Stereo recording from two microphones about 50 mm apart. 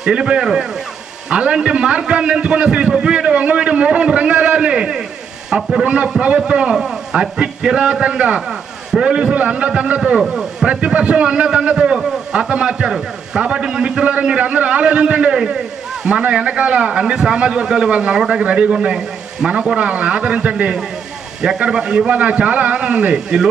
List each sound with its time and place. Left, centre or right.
0.0 s a man's voice: centre
1.3 s a sound: centre
6.2 s a man's voice: right
8.5 s a sound: centre
9.4 s a man's voice: right
9.9 s a man's voice: centre
23.1 s a man's voice: centre